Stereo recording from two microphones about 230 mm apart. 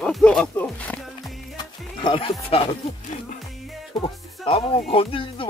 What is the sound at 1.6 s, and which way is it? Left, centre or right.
Music, left.